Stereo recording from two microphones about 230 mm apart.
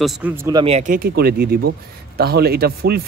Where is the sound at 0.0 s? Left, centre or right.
Centre.